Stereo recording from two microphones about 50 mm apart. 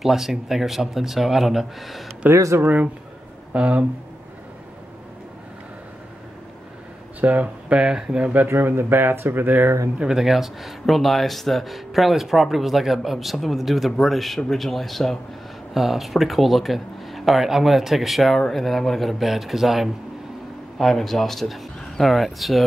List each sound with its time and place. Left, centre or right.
0.0 s speech: centre
2.3 s speech: right
2.6 s speech: right
7.2 s speech: right
7.7 s speech: centre
8.5 s speech: right
10.0 s speech: centre